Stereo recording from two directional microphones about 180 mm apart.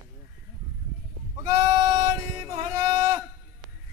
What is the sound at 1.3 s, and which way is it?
Sheep, 20° right (ahead or behind).